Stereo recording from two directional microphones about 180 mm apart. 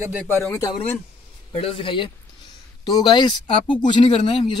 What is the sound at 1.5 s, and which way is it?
Speech, 30° left (ahead or behind).